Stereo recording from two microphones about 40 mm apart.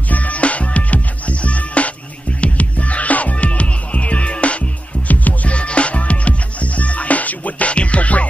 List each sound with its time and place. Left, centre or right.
0.1 s music: left